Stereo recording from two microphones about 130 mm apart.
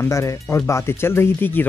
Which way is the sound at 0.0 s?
25° left (ahead or behind).